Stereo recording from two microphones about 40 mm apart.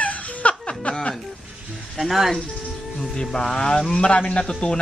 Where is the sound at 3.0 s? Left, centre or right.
Centre.